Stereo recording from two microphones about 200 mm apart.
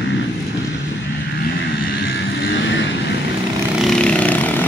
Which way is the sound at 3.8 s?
5° left (ahead or behind).